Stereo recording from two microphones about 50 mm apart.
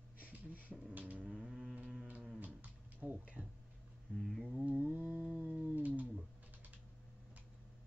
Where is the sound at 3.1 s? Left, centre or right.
Right.